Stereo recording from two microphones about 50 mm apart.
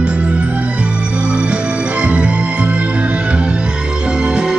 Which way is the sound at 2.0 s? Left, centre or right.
Right.